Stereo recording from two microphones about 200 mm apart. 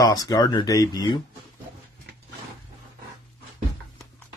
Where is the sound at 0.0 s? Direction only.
20° left (ahead or behind).